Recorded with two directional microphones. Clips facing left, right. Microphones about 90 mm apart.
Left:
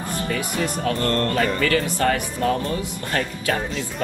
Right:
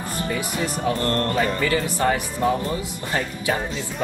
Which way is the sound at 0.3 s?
20° right (ahead or behind).